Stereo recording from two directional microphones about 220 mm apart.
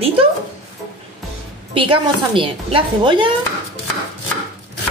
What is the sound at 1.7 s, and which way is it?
A woman's voice, 25° right (ahead or behind).